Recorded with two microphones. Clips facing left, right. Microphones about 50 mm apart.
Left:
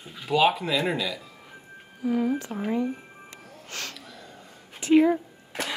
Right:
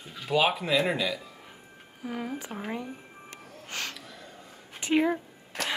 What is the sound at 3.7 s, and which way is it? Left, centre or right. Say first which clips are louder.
Speech: right 1 dB; right.